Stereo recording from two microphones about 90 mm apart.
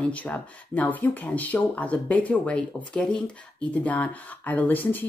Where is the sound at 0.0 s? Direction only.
15° left (ahead or behind).